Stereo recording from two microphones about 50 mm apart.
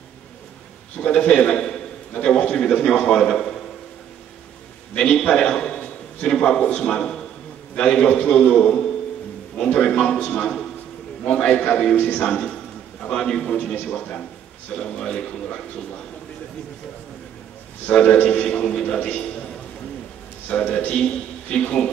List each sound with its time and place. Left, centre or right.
0.9 s a man's voice: left
2.1 s a sound: left
2.6 s a man's voice: centre
4.9 s a man's voice: centre
11.5 s a man's voice: left
17.9 s a man's voice: centre
20.4 s a man's voice: left
20.9 s a man's voice: centre
21.5 s a man's voice: left